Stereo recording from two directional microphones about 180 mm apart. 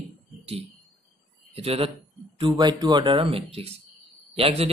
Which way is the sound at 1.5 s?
35° right (ahead or behind).